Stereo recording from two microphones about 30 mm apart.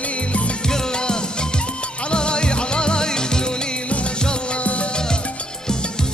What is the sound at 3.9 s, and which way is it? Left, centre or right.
Music, left.